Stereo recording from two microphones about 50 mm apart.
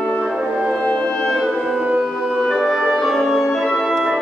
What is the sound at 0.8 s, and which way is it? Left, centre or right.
Music, centre.